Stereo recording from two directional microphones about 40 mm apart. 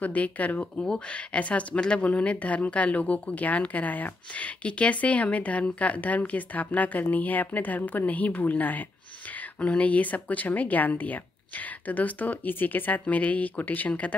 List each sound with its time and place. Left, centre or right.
0.0 s a woman's voice: left
0.7 s a woman's voice: left